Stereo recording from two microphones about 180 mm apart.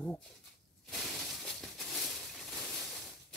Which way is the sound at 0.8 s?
Centre (ahead or behind).